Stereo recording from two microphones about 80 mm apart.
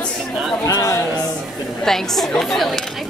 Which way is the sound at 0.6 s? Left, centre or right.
Left.